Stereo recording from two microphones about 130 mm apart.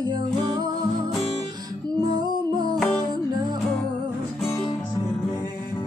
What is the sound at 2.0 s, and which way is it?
Music, 35° right (ahead or behind).